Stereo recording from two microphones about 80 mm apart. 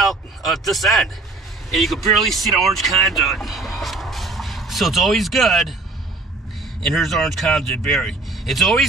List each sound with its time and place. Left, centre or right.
0.0 s speech: centre
6.9 s speech: centre